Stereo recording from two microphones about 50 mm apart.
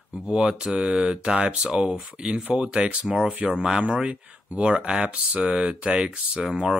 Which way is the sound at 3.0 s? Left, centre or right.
Centre.